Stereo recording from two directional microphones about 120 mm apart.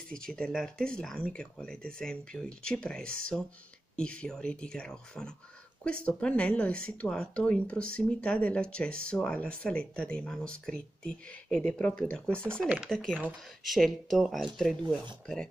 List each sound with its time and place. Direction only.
0.1 s speech: 5° left (ahead or behind)
12.3 s speech: 20° right (ahead or behind)
12.6 s speech: 10° right (ahead or behind)
12.9 s speech: 5° left (ahead or behind)